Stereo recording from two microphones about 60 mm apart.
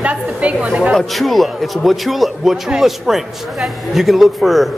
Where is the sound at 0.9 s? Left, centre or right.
Centre.